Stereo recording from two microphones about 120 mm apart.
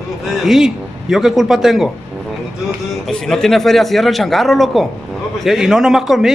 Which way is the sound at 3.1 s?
5° left (ahead or behind).